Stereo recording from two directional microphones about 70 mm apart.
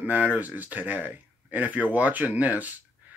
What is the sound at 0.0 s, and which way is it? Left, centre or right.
Speech, right.